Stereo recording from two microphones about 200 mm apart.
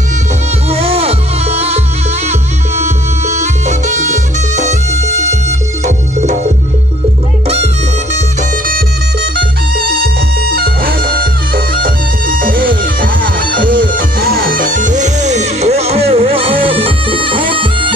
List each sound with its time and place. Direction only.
0.7 s music: 30° right (ahead or behind)
2.8 s music: 35° right (ahead or behind)
7.4 s music: 30° right (ahead or behind)
8.6 s music: 45° right (ahead or behind); by 17.9 s 25° right (ahead or behind)